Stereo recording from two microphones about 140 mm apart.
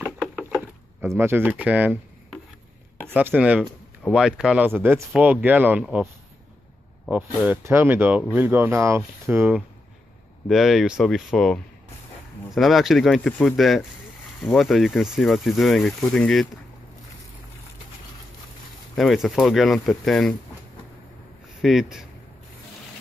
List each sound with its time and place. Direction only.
0.4 s a sound: 5° right (ahead or behind)
1.0 s speech: 15° right (ahead or behind)
3.1 s speech: 10° right (ahead or behind)
7.1 s speech: 10° right (ahead or behind)
10.5 s speech: centre (ahead or behind)
18.9 s speech: centre (ahead or behind)
21.5 s speech: centre (ahead or behind)